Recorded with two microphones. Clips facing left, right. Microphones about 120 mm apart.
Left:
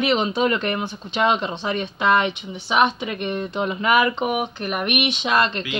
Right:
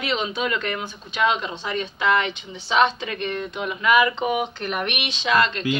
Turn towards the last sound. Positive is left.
turn(degrees=25)  # may be behind; listen again after turning